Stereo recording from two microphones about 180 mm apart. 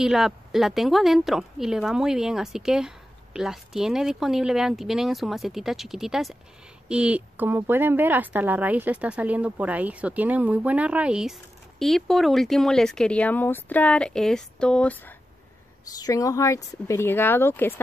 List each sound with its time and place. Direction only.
0.0 s speech: centre (ahead or behind)
16.0 s speech: 20° left (ahead or behind)